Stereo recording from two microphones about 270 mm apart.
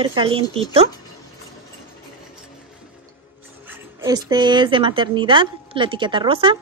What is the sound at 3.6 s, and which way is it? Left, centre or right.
A woman's voice, centre.